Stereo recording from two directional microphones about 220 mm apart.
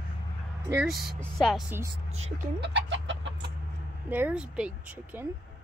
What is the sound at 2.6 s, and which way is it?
Chicken, 55° right (ahead or behind).